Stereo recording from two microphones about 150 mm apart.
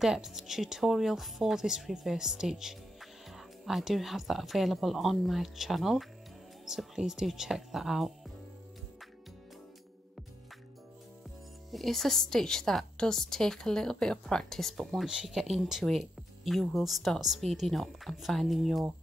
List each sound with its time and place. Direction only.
0.0 s a woman's voice: centre (ahead or behind)
11.7 s a woman's voice: centre (ahead or behind)